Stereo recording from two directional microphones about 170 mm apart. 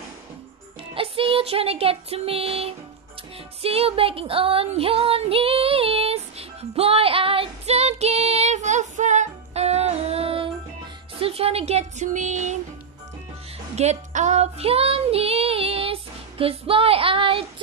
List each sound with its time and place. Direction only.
0.9 s music: 35° right (ahead or behind)
3.6 s female singing: 35° right (ahead or behind)
11.1 s speech: 35° right (ahead or behind)
13.7 s child singing: 40° right (ahead or behind)